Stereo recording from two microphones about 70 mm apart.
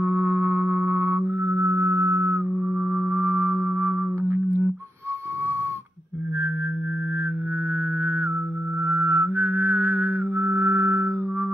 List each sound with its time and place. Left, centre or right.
0.0 s music: right
8.0 s music: right